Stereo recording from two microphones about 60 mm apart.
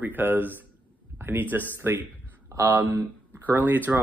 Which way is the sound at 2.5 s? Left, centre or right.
Right.